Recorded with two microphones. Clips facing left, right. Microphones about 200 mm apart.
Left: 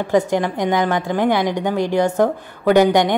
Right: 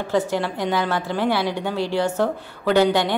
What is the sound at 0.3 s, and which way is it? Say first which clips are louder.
A woman's voice: left 4 dB; 20° left (ahead or behind).